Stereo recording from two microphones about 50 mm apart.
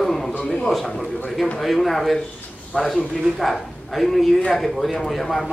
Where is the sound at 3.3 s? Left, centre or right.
Centre.